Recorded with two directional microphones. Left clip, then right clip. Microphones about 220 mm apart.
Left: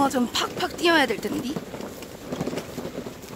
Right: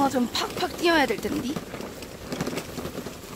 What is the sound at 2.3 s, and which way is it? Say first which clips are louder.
Vehicle: left 1 dB; 25° right (ahead or behind).